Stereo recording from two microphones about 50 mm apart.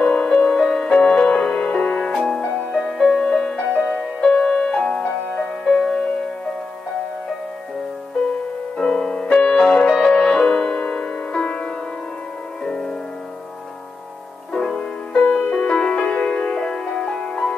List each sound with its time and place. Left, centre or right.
0.2 s music: centre
0.9 s music: centre
2.9 s music: centre
8.7 s music: centre
14.5 s music: centre